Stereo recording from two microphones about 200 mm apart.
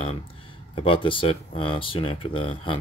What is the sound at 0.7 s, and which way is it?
Speech, 25° left (ahead or behind).